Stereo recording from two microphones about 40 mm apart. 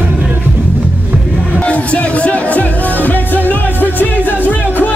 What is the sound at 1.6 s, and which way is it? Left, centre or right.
Music, left.